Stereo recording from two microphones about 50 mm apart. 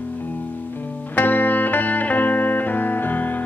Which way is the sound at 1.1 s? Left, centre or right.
Left.